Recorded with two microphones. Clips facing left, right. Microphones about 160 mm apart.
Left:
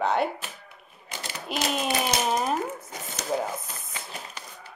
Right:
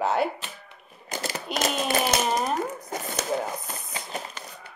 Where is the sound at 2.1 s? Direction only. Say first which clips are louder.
Right 2 dB; 50° right (ahead or behind).